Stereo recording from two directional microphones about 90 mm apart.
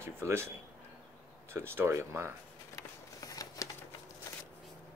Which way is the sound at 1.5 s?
25° right (ahead or behind).